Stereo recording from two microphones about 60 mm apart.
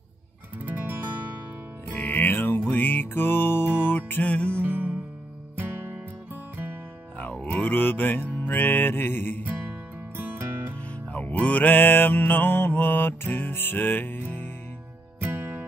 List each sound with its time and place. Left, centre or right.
0.7 s music: right
1.9 s music: left
4.6 s music: right
7.2 s music: left
10.1 s music: right
11.4 s mantra: left
15.2 s music: right